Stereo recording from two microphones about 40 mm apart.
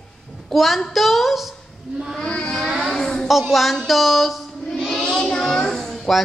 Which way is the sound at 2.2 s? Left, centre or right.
Left.